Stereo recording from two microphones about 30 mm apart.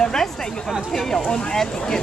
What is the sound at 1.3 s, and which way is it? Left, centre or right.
Speech, left.